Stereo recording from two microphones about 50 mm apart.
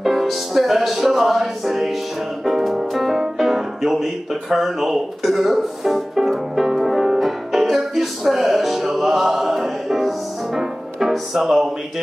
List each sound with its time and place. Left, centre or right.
0.0 s music: centre